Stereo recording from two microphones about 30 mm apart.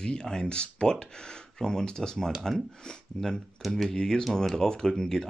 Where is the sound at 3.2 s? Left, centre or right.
Centre.